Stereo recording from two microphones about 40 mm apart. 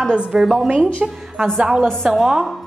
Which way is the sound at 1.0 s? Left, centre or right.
Right.